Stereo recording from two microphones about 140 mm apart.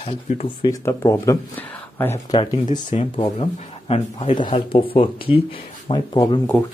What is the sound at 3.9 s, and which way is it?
Speech, 50° left (ahead or behind).